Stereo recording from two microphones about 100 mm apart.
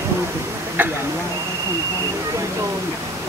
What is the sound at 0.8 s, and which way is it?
Speech, 20° right (ahead or behind).